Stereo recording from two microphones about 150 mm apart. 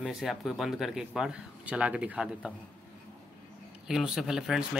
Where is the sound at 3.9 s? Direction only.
5° right (ahead or behind).